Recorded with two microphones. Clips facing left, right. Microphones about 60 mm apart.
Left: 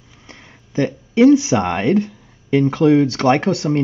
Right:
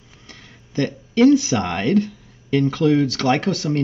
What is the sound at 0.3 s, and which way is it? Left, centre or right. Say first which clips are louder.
Speech: left 2 dB; centre.